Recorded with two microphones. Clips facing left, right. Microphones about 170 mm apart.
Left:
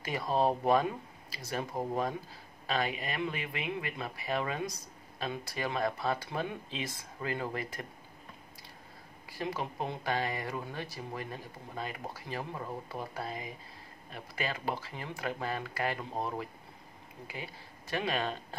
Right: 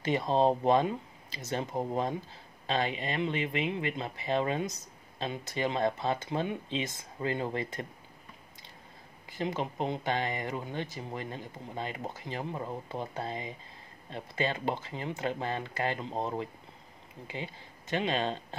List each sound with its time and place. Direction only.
0.0 s speech: 25° right (ahead or behind)
9.3 s speech: 20° right (ahead or behind)